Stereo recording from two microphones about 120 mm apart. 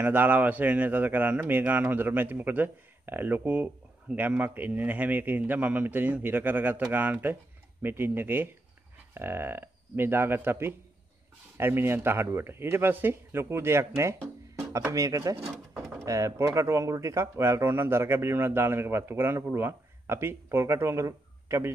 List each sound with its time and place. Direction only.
0.0 s a man's voice: 15° right (ahead or behind)